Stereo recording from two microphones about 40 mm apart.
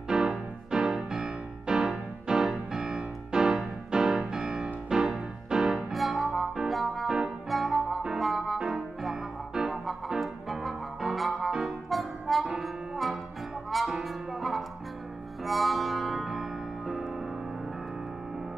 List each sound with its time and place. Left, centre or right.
0.1 s music: centre
5.9 s music: centre